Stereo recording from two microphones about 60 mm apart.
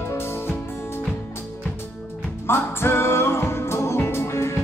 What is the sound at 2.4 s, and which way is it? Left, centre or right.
Music, left.